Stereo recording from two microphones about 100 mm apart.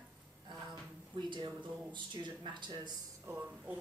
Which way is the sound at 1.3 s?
50° right (ahead or behind).